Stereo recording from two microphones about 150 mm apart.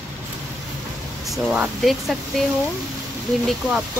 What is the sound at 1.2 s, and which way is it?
Speech, centre (ahead or behind).